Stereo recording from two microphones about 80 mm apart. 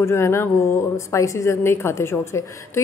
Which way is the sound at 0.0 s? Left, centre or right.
Left.